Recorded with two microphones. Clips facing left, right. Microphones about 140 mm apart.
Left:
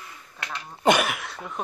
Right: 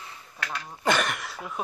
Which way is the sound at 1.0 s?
Centre (ahead or behind).